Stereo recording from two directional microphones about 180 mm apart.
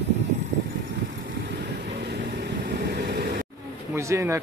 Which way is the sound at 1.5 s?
65° right (ahead or behind).